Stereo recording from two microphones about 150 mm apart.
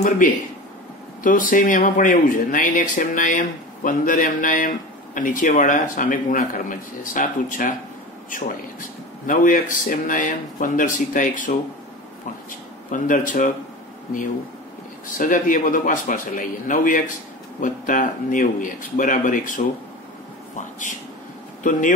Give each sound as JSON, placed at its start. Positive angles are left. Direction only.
{"t": 0.2, "sound": "speech", "side_deg": 60}
{"t": 9.2, "sound": "speech", "side_deg": 65}
{"t": 12.9, "sound": "speech", "side_deg": 60}
{"t": 15.1, "sound": "speech", "side_deg": 60}